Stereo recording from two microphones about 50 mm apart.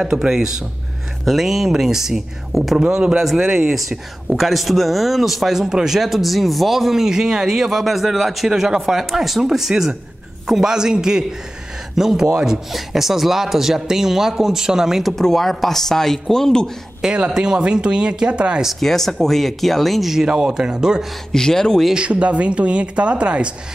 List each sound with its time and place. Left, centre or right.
0.0 s speech: centre
2.8 s speech: right
4.4 s speech: centre
8.5 s speech: centre
15.1 s speech: centre
17.0 s speech: centre
18.8 s speech: centre
21.3 s speech: centre
21.9 s speech: right